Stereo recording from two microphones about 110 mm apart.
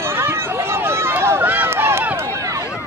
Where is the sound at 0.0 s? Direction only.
20° right (ahead or behind).